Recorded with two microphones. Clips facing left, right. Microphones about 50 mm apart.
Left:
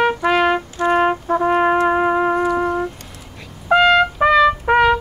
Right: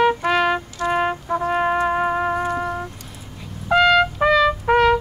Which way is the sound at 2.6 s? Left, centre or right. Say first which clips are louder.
Left 6 dB; left.